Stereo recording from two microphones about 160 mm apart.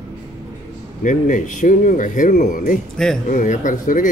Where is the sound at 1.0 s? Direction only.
55° left (ahead or behind).